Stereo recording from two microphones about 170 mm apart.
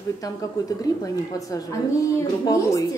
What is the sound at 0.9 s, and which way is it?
Speech, 20° left (ahead or behind).